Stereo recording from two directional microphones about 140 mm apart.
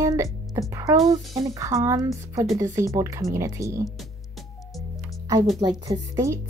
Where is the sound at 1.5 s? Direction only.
25° right (ahead or behind).